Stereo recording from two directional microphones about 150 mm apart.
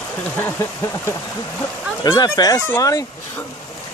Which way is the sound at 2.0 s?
25° left (ahead or behind).